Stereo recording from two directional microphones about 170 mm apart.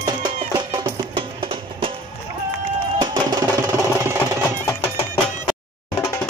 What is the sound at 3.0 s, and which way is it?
Music, 25° right (ahead or behind).